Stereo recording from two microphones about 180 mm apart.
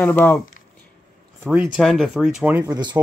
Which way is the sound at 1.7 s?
Centre (ahead or behind).